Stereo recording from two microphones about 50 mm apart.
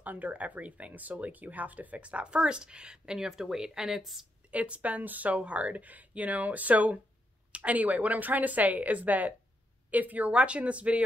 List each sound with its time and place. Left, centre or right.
0.0 s speech: right; by 4.3 s centre
4.5 s speech: right